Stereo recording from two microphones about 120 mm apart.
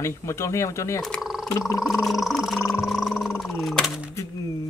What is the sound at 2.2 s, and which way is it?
Speech, 5° right (ahead or behind).